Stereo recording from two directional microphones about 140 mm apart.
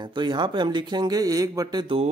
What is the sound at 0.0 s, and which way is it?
Speech, 30° right (ahead or behind).